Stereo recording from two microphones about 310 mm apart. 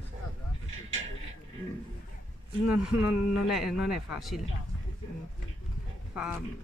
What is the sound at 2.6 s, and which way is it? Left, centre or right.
Speech, centre.